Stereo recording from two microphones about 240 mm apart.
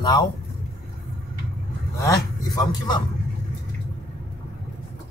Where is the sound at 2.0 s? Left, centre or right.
Centre.